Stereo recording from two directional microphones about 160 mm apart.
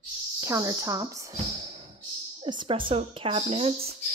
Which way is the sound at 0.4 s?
20° right (ahead or behind).